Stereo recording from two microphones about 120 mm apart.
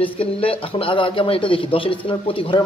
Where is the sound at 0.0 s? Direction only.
50° left (ahead or behind).